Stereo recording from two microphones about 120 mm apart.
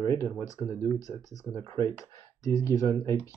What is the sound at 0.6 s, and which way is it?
Speech, 10° right (ahead or behind).